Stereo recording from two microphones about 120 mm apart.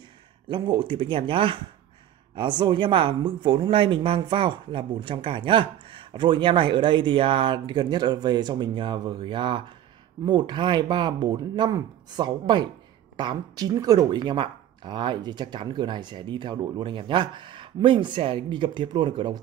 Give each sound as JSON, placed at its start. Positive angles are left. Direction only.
{"t": 0.5, "sound": "speech", "side_deg": -40}